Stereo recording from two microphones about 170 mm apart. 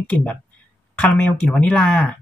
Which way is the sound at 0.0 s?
10° left (ahead or behind).